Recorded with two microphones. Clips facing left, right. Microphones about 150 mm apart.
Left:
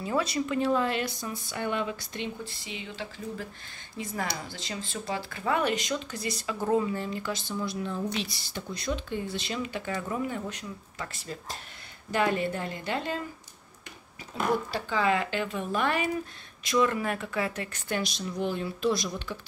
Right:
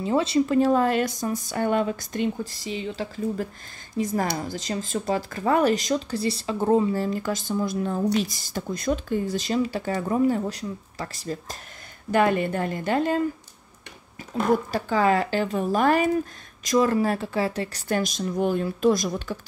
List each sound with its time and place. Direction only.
0.0 s speech: 25° right (ahead or behind)
0.6 s speech: 45° right (ahead or behind)
12.1 s speech: 55° right (ahead or behind)
14.3 s speech: 45° right (ahead or behind)